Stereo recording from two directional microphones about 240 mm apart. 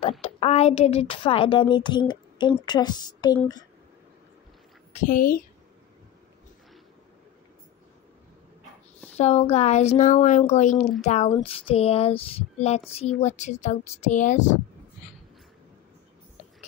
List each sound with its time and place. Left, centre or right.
0.2 s a woman's voice: left
5.0 s a woman's voice: left
9.1 s speech: left